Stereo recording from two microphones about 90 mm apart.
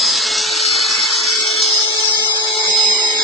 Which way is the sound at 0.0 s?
Centre (ahead or behind).